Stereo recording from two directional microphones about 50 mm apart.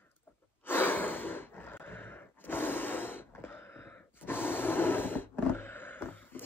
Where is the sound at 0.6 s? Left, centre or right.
Left.